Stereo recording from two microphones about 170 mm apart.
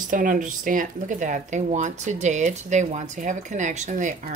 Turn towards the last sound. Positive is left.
turn(degrees=-50)  # may be behind; listen again after turning